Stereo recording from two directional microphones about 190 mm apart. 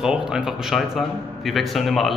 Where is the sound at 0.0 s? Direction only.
5° right (ahead or behind).